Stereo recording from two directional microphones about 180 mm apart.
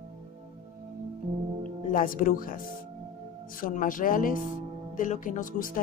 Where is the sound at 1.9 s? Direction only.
50° left (ahead or behind).